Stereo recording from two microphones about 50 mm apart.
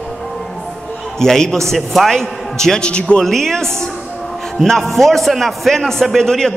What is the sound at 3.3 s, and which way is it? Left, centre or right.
A man's voice, centre.